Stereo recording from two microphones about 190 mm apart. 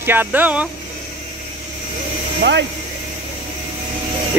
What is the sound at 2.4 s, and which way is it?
Speech, 65° right (ahead or behind).